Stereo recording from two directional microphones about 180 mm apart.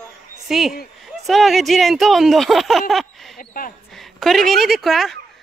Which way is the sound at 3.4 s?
50° left (ahead or behind).